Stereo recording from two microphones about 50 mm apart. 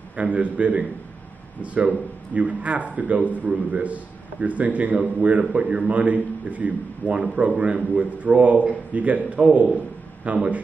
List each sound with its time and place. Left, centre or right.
0.1 s a man's voice: right